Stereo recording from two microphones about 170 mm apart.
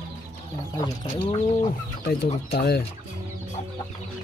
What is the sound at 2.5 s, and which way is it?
Speech, 70° left (ahead or behind).